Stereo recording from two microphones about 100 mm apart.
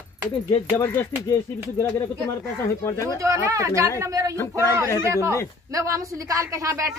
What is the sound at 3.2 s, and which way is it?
A woman's voice, 30° right (ahead or behind).